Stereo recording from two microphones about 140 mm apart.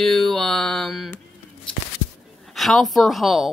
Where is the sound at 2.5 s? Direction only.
Centre (ahead or behind).